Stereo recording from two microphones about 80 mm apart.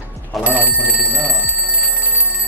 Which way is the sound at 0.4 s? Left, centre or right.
Centre.